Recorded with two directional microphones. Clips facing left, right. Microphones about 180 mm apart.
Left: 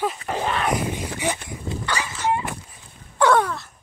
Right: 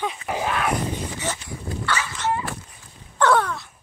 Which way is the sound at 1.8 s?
15° left (ahead or behind).